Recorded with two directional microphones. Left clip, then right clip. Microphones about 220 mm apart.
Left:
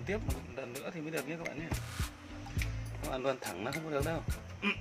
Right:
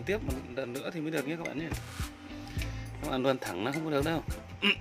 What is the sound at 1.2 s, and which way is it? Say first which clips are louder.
Speech: right 5 dB; 45° right (ahead or behind).